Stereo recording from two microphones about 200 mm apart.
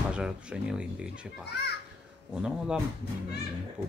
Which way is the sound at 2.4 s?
5° right (ahead or behind).